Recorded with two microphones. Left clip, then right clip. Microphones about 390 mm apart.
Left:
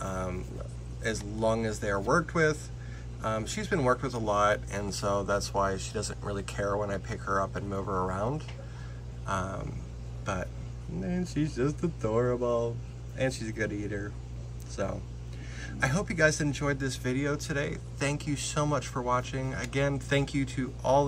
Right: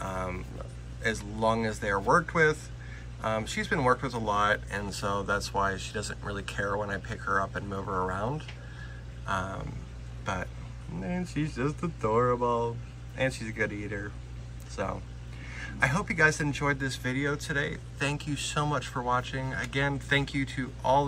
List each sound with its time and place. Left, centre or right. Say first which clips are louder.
0.0 s a sound: right 1 dB; centre
1.0 s speech: right 2 dB; centre
9.2 s a sound: right 1 dB; centre
11.0 s speech: left 1 dB; centre
15.5 s speech: right 3 dB; centre
20.2 s speech: even; right
20.6 s speech: even; centre